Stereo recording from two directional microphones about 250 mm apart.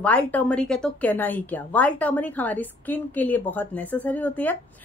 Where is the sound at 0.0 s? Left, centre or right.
Centre.